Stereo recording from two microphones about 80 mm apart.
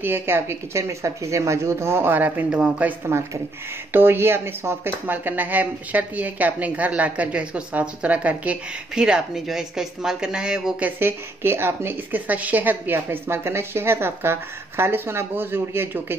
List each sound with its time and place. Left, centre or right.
0.0 s speech: right
3.1 s speech: right; by 10.9 s centre
11.0 s speech: right